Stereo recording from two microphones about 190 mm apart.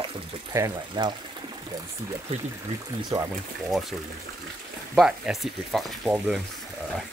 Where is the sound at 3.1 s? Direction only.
25° right (ahead or behind).